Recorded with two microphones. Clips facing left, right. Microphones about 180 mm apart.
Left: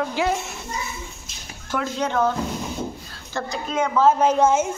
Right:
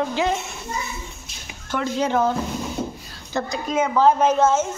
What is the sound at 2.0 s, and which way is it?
Speech, 10° right (ahead or behind).